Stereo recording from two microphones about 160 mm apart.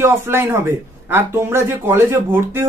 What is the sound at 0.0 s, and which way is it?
A man's voice, 15° right (ahead or behind).